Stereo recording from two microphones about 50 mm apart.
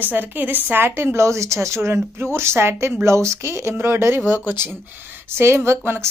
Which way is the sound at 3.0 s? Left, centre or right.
Right.